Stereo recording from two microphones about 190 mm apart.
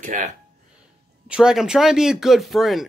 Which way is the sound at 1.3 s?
5° right (ahead or behind).